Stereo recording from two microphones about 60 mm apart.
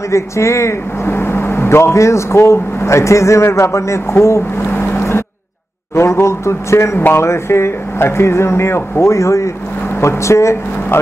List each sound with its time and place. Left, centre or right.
0.1 s speech: left
1.0 s speech: left
4.6 s a sound: left
5.9 s speech: left
7.0 s speech: left